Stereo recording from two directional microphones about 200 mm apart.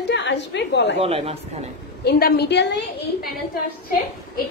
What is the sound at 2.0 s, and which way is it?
Speech, 50° left (ahead or behind).